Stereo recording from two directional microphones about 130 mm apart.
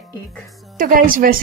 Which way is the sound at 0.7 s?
90° right.